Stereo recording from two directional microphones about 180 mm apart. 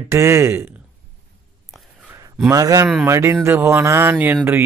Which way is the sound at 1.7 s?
Centre (ahead or behind).